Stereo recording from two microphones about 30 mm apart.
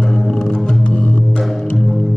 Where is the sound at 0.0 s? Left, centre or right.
Centre.